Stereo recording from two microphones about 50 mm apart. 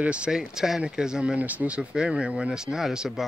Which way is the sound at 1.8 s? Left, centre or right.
Centre.